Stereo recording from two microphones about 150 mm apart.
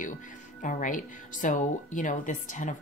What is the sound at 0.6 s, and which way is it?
A woman's voice, 60° left (ahead or behind).